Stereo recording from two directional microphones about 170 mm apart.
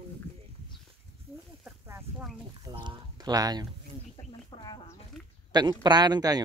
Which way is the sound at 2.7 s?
25° right (ahead or behind).